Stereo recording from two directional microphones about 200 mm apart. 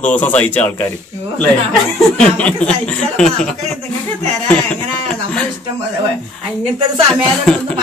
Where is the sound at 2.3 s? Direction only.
5° left (ahead or behind).